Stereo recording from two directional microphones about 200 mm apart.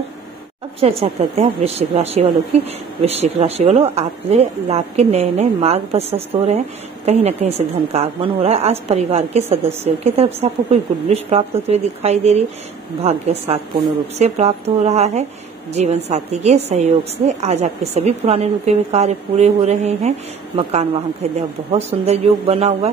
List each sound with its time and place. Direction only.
0.7 s a woman's voice: 30° right (ahead or behind)